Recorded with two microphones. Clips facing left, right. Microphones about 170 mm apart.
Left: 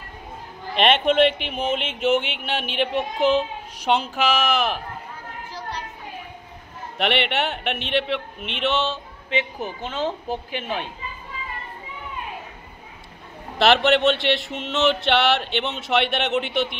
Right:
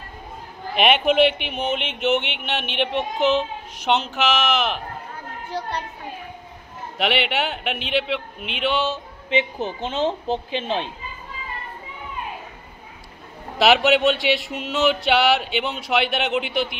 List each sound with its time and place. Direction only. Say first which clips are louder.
0.7 s a man's voice: even; 5° right (ahead or behind)
3.2 s a child's voice: even; 35° left (ahead or behind)
7.0 s a man's voice: even; centre (ahead or behind)
9.3 s speech: right 3 dB; 20° right (ahead or behind)
13.6 s a man's voice: right 1 dB; 5° right (ahead or behind)